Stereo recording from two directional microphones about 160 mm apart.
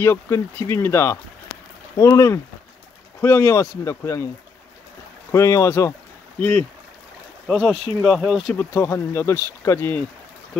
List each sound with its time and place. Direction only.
0.0 s speech: 15° left (ahead or behind)
5.3 s speech: 20° left (ahead or behind)
7.4 s speech: centre (ahead or behind)
8.5 s speech: 15° left (ahead or behind)